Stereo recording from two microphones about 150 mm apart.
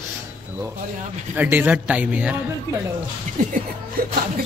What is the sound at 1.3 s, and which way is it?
Speech, 10° right (ahead or behind).